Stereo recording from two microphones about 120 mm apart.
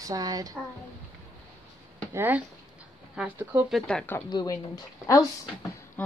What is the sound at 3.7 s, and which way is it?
Speech, 5° left (ahead or behind).